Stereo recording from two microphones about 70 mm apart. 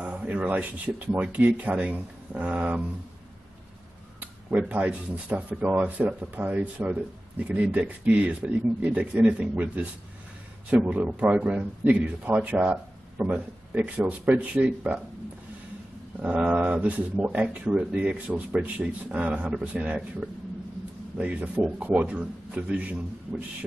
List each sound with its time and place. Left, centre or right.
0.0 s speech: centre
4.2 s speech: right
16.4 s speech: centre